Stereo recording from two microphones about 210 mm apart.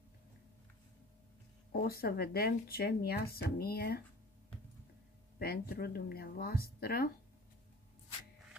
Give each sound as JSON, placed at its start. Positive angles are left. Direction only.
{"t": 1.7, "sound": "speech", "side_deg": 45}
{"t": 5.4, "sound": "speech", "side_deg": 45}